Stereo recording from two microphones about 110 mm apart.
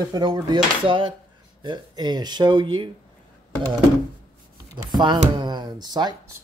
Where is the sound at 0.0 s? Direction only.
40° right (ahead or behind).